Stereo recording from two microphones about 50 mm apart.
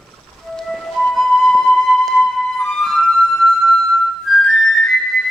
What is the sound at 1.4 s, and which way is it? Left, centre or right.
Music, centre.